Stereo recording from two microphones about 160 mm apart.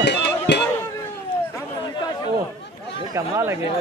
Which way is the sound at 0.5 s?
90° left.